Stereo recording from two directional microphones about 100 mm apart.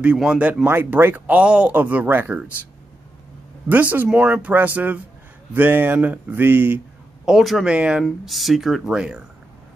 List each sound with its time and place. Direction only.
0.0 s speech: 10° right (ahead or behind)
7.2 s speech: centre (ahead or behind)
8.0 s speech: centre (ahead or behind)